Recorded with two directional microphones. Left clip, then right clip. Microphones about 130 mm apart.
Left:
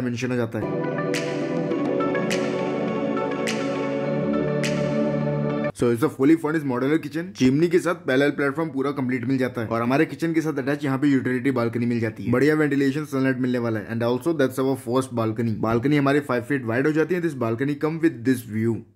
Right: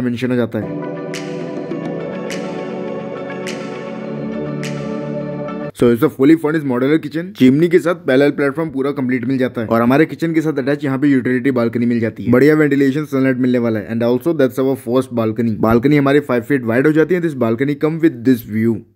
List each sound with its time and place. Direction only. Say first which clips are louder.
0.0 s speech: right 7 dB; 30° right (ahead or behind)
5.8 s speech: right 10 dB; 35° right (ahead or behind)
9.7 s speech: right 10 dB; 45° right (ahead or behind); by 12.1 s 25° right (ahead or behind)
12.3 s speech: right 9 dB; 40° right (ahead or behind)
15.6 s speech: right 8 dB; 45° right (ahead or behind)